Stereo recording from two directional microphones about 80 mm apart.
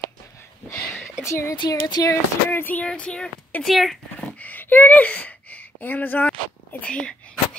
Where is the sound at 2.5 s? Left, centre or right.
Left; by 4.0 s centre.